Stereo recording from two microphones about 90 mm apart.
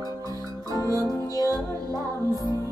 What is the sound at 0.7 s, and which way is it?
Music, 40° left (ahead or behind).